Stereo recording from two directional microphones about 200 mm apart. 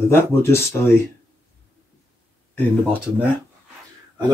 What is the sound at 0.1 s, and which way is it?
Speech, 10° left (ahead or behind).